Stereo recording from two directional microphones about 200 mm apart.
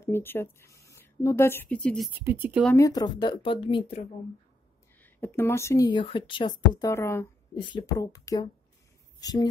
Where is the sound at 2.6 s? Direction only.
15° left (ahead or behind).